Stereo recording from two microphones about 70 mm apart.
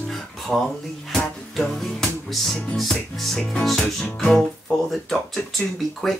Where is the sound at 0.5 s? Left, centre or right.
Centre.